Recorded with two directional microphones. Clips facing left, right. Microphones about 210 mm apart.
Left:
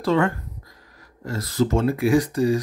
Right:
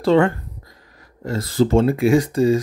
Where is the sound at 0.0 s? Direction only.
30° right (ahead or behind).